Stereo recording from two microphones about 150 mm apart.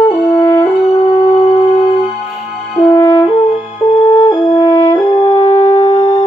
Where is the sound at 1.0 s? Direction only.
45° left (ahead or behind).